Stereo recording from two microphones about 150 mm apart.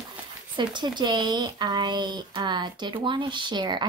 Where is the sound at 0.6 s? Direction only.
30° right (ahead or behind).